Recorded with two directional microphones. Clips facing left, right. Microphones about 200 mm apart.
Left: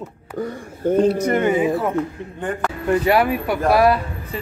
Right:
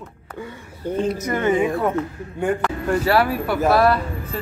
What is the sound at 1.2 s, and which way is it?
Speech, 20° left (ahead or behind).